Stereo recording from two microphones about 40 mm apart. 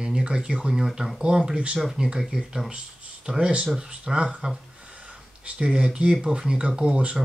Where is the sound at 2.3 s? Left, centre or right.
Centre.